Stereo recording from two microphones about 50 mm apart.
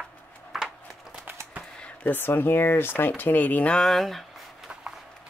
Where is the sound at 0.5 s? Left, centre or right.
Centre.